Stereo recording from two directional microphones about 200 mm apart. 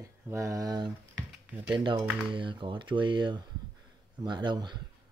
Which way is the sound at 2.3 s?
25° right (ahead or behind).